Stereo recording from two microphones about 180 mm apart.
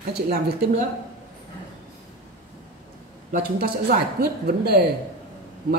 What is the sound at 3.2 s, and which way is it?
Speech, 50° right (ahead or behind).